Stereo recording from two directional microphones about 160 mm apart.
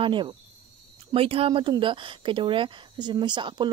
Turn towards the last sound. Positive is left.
turn(degrees=-30)  # may be behind; listen again after turning